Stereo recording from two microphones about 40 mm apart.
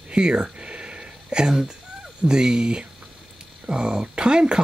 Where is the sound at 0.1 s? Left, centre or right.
Right.